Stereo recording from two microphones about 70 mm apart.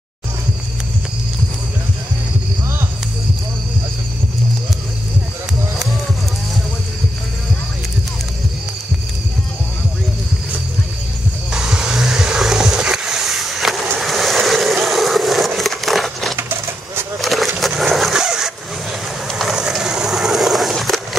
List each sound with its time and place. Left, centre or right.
11.5 s skateboard: centre
16.3 s bird: right
17.2 s a sound: centre
18.1 s vehicle: centre
19.6 s a sound: centre
20.7 s skateboard: centre